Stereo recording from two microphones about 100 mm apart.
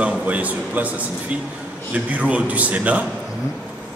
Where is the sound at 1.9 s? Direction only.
15° right (ahead or behind).